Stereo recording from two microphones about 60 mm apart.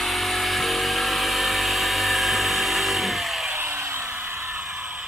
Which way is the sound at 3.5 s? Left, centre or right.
Right.